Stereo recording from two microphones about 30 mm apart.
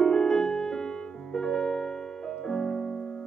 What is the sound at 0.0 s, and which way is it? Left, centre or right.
Music, left.